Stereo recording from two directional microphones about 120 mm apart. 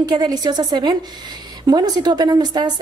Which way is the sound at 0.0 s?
35° right (ahead or behind).